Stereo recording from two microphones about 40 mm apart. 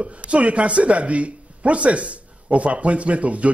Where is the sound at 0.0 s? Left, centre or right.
Right.